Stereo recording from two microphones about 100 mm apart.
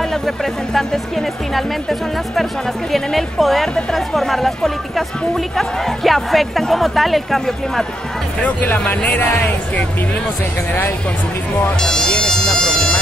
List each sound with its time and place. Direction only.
0.1 s speech: 5° left (ahead or behind)
8.4 s speech: 15° left (ahead or behind)
11.8 s music: 5° left (ahead or behind)